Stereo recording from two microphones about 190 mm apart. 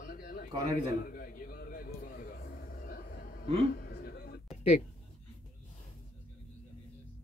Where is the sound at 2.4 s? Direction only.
50° left (ahead or behind).